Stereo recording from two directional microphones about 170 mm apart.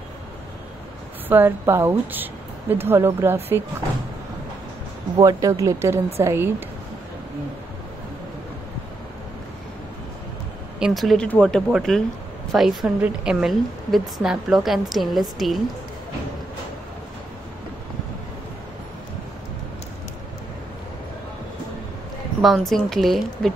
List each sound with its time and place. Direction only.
1.3 s a woman's voice: 15° right (ahead or behind)
5.1 s a woman's voice: 25° right (ahead or behind)
10.8 s a woman's voice: centre (ahead or behind)
22.4 s a woman's voice: centre (ahead or behind)